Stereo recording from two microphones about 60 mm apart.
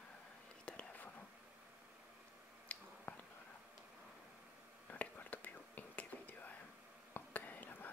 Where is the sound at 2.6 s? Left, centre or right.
Left.